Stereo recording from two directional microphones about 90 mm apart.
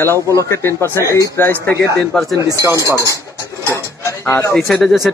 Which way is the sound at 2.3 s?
40° right (ahead or behind).